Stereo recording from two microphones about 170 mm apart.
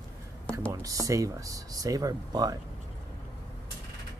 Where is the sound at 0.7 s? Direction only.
20° right (ahead or behind).